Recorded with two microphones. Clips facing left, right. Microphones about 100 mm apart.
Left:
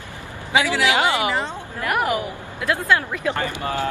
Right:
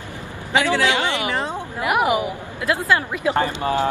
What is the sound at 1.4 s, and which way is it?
Speech, 10° right (ahead or behind).